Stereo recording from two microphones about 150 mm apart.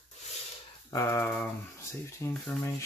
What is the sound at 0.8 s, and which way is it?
Speech, 20° left (ahead or behind).